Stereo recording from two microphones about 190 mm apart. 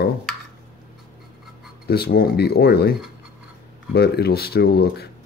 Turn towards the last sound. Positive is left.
turn(degrees=55)  # may be behind; listen again after turning